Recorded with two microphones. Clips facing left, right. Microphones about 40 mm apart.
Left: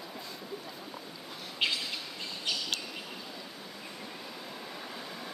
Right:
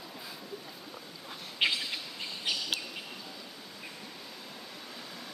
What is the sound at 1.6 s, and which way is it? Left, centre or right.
Bird, centre.